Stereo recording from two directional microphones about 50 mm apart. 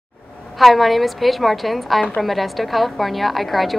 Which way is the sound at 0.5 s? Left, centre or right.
Centre.